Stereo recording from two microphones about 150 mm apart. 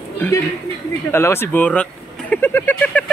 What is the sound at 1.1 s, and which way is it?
Speech, 15° left (ahead or behind).